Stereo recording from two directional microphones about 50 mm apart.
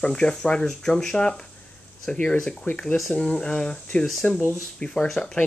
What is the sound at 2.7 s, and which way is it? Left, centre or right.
Speech, left.